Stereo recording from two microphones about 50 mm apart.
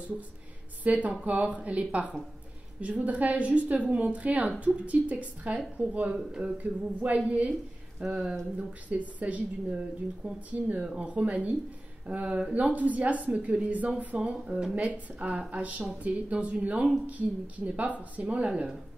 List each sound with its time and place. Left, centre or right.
0.8 s a woman's voice: right
8.0 s a woman's voice: centre
8.5 s a woman's voice: right
14.8 s a woman's voice: right